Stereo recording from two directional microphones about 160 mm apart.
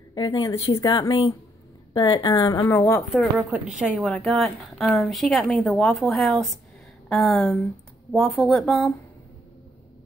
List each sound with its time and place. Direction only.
0.1 s a woman's voice: 30° left (ahead or behind)
3.3 s a woman's voice: 5° right (ahead or behind)